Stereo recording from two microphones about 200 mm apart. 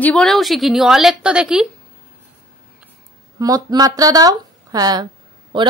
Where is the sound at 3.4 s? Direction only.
20° right (ahead or behind).